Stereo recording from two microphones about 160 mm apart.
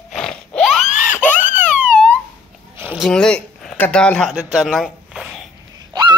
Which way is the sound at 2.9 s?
Centre (ahead or behind).